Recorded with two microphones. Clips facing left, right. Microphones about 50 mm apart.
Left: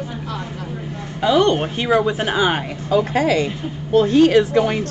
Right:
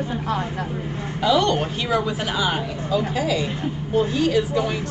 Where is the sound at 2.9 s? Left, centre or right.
Left.